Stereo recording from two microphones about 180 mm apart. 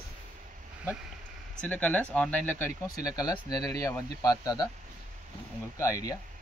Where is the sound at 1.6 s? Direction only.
5° left (ahead or behind).